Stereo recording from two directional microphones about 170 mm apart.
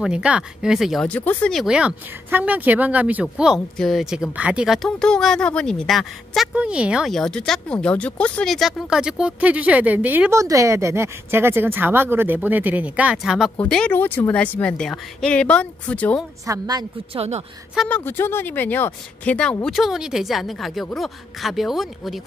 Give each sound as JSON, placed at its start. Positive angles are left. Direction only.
{"t": 0.0, "sound": "a woman's voice", "side_deg": -5}
{"t": 16.4, "sound": "a woman's voice", "side_deg": -20}
{"t": 17.8, "sound": "speech", "side_deg": 10}